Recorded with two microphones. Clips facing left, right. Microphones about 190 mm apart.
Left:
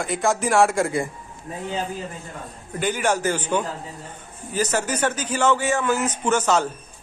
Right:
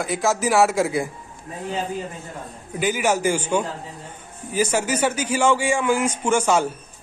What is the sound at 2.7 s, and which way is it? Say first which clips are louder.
A man's voice: right 1 dB; 10° right (ahead or behind).